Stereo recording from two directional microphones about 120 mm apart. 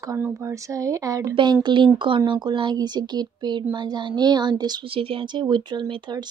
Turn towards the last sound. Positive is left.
turn(degrees=-45)  # may be behind; listen again after turning